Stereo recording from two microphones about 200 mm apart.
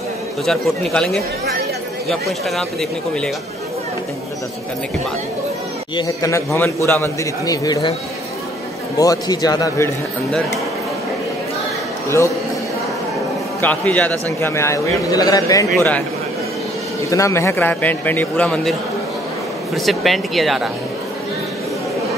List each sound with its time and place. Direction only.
0.5 s speech: centre (ahead or behind)
5.9 s a man's voice: 15° left (ahead or behind)
8.9 s a man's voice: 15° left (ahead or behind)
13.6 s a man's voice: 10° left (ahead or behind)
17.1 s a man's voice: 15° left (ahead or behind)